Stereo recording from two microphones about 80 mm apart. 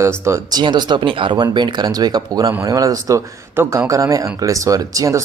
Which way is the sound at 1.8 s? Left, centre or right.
Right.